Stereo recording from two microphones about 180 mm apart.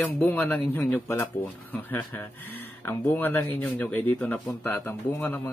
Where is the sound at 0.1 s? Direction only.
10° left (ahead or behind).